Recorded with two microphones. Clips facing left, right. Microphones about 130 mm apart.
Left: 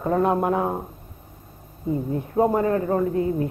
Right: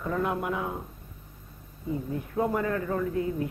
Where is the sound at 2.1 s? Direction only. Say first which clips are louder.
Left 7 dB; 35° left (ahead or behind).